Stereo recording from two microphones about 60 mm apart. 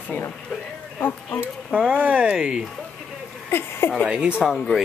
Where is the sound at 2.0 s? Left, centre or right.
Right.